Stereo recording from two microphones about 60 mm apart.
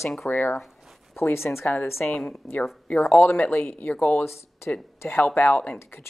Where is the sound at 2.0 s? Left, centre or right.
Centre.